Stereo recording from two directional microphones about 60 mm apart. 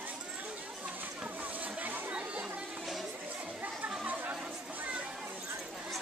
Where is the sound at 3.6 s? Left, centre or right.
Right.